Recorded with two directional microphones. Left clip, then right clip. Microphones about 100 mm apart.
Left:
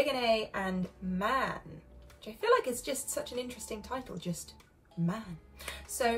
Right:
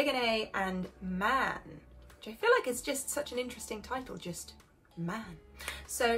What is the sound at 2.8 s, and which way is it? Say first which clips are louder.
A woman's voice: right 1 dB; 30° right (ahead or behind).